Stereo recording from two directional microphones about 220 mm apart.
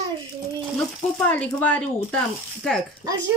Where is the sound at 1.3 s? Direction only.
5° left (ahead or behind).